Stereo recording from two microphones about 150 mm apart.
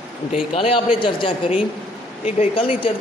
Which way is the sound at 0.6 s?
35° left (ahead or behind).